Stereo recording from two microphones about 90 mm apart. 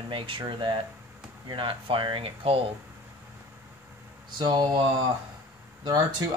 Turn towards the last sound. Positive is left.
turn(degrees=-45)  # may be behind; listen again after turning